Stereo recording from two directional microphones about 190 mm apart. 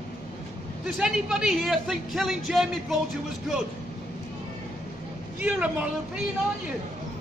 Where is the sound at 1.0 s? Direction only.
5° right (ahead or behind).